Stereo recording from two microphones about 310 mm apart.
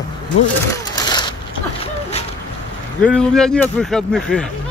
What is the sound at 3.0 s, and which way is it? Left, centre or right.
Speech, centre.